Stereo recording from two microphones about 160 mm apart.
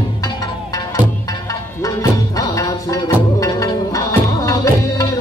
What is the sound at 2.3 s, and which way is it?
Music, 20° left (ahead or behind).